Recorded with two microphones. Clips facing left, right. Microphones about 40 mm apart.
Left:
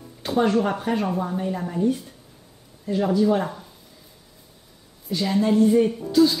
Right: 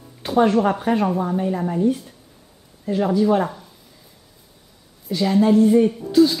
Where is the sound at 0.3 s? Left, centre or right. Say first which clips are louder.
Right 4 dB; centre.